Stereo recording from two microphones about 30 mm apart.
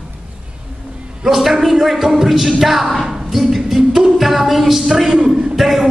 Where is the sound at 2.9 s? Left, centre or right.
Centre.